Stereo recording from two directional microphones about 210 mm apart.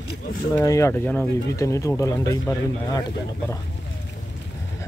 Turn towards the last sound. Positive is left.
turn(degrees=15)  # may be behind; listen again after turning